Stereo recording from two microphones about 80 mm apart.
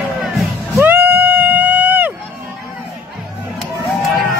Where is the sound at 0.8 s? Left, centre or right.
Right.